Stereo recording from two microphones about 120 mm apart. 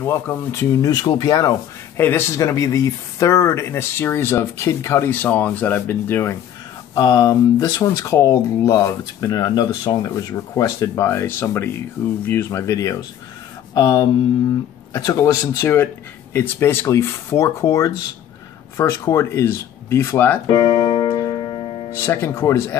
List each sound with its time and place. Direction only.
0.0 s speech: 20° left (ahead or behind)
2.0 s speech: 20° left (ahead or behind)
7.0 s speech: 30° left (ahead or behind)
13.7 s a sound: 35° left (ahead or behind)
15.0 s speech: 30° left (ahead or behind)
20.4 s music: 45° left (ahead or behind)
21.2 s music: 40° left (ahead or behind)
21.9 s speech: 20° left (ahead or behind)